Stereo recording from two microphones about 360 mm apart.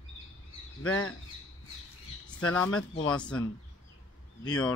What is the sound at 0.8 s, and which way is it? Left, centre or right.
Speech, left.